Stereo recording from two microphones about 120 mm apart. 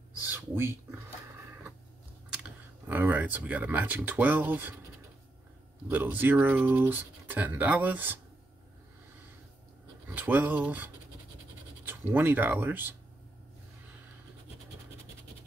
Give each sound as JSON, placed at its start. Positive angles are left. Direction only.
{"t": 0.3, "sound": "a sound", "side_deg": -20}
{"t": 2.4, "sound": "speech", "side_deg": -15}
{"t": 5.9, "sound": "speech", "side_deg": -15}
{"t": 10.0, "sound": "speech", "side_deg": -15}